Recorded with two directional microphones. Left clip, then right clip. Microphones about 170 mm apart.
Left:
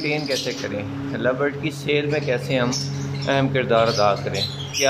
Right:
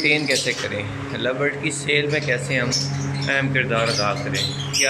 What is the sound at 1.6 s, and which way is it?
Speech, 10° left (ahead or behind).